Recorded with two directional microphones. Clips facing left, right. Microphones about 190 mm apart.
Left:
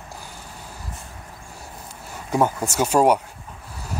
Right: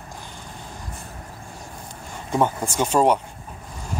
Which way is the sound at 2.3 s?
5° left (ahead or behind).